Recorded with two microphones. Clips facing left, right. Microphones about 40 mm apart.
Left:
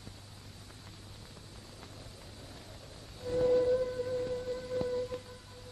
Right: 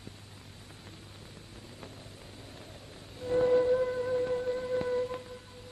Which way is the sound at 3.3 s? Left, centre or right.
Right.